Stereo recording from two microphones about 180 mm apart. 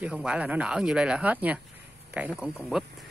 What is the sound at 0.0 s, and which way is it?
Speech, 5° right (ahead or behind).